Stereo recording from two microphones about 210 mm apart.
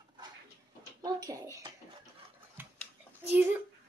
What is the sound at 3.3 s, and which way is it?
Speech, 10° right (ahead or behind).